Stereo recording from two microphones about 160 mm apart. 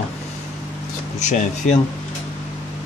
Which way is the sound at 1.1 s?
50° left (ahead or behind).